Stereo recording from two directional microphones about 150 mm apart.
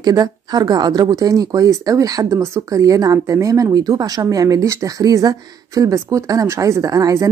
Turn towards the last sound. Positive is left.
turn(degrees=-25)  # may be behind; listen again after turning